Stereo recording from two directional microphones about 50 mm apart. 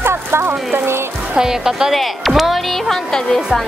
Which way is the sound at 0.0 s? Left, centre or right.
Right.